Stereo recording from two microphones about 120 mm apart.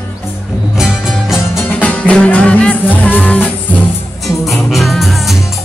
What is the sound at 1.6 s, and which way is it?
Music, 15° left (ahead or behind).